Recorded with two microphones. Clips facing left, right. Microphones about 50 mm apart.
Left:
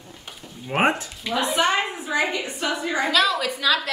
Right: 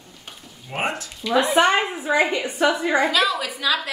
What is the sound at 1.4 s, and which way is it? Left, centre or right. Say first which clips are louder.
Speech: right 3 dB; right.